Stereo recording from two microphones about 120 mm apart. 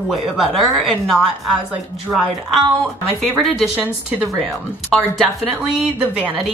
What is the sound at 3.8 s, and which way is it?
Speech, 10° right (ahead or behind).